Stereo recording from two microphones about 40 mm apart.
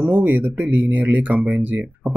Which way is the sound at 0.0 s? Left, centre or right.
Right.